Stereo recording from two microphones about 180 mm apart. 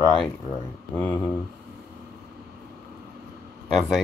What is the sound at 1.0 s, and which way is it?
Speech, 10° left (ahead or behind).